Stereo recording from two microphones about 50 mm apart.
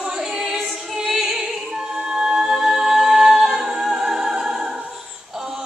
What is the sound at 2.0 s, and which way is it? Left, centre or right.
A capella, centre.